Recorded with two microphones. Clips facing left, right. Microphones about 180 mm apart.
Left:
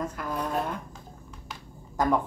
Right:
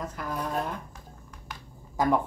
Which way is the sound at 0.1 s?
Centre (ahead or behind).